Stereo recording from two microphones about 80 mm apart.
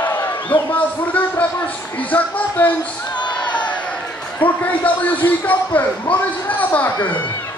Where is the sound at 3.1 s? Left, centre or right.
Left.